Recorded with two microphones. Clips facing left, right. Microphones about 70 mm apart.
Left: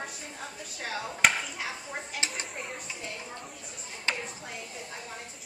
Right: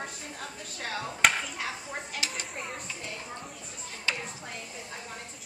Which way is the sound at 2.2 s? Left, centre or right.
Left.